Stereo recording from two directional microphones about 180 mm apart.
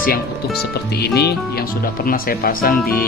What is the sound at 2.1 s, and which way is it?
Speech, 55° left (ahead or behind).